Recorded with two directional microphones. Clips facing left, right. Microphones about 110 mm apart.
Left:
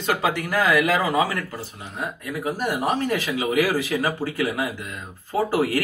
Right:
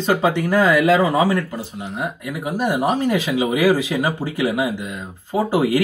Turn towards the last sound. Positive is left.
turn(degrees=-15)  # may be behind; listen again after turning